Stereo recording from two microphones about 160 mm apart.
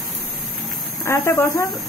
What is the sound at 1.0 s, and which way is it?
Speech, 15° left (ahead or behind).